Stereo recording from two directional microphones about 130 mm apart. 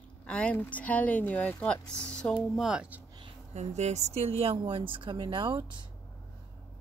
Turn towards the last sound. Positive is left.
turn(degrees=-35)  # may be behind; listen again after turning